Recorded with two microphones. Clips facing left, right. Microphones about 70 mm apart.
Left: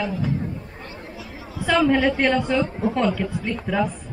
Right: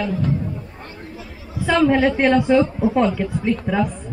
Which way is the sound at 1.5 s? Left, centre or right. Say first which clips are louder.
Right 2 dB; centre.